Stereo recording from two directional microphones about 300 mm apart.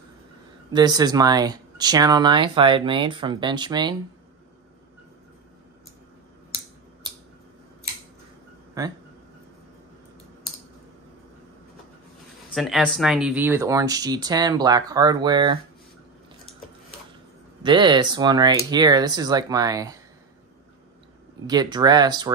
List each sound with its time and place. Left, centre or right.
0.7 s speech: centre
8.8 s speech: centre
12.5 s speech: centre
17.6 s speech: centre
21.5 s speech: centre